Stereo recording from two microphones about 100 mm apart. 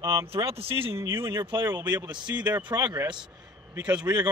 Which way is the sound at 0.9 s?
25° right (ahead or behind).